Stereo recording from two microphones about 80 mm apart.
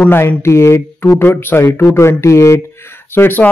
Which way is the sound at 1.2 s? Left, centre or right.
Left.